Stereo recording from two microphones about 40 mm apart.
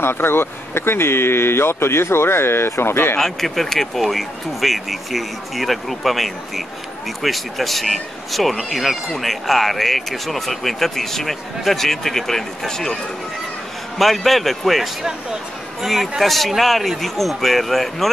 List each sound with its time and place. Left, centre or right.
0.0 s speech: left
3.2 s speech: centre
13.9 s speech: centre